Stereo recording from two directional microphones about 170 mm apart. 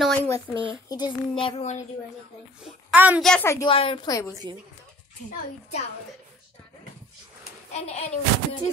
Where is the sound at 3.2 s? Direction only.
5° left (ahead or behind).